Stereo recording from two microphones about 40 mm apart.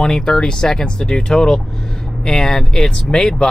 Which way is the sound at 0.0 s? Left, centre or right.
Centre.